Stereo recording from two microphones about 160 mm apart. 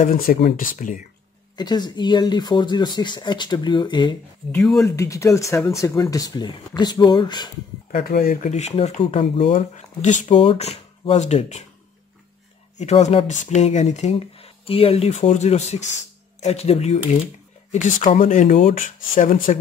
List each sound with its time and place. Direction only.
0.0 s speech: 65° left (ahead or behind)
0.7 s speech: 55° left (ahead or behind)
1.6 s speech: 25° left (ahead or behind)
4.8 s speech: 20° left (ahead or behind)
7.9 s speech: 65° left (ahead or behind)
8.4 s speech: 45° left (ahead or behind)
9.6 s speech: 45° left (ahead or behind)
12.7 s speech: 45° left (ahead or behind)